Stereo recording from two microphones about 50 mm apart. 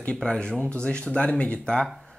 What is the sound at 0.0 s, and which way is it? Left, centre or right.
A man's voice, left.